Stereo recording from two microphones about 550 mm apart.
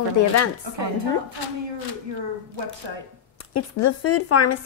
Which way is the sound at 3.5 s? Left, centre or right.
Left.